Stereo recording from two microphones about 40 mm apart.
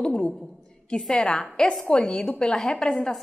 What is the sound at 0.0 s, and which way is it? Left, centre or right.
Speech, left.